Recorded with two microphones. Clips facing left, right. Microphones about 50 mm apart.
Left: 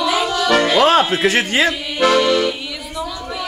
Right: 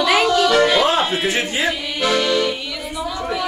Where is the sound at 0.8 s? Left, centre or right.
Left.